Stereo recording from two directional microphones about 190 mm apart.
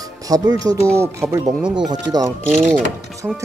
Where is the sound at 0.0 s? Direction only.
20° right (ahead or behind).